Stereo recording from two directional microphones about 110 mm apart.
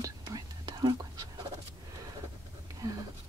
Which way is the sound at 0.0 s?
40° right (ahead or behind).